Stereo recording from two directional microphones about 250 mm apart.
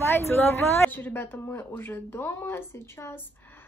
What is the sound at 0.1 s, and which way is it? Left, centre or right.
A woman's voice, centre.